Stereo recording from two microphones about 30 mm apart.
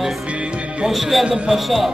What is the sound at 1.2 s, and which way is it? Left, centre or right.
Speech, right.